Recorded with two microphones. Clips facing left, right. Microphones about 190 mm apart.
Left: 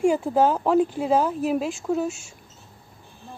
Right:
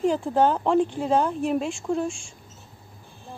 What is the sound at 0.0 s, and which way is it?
Speech, 10° left (ahead or behind).